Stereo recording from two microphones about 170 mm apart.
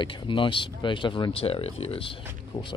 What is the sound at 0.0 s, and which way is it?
Speech, 30° left (ahead or behind).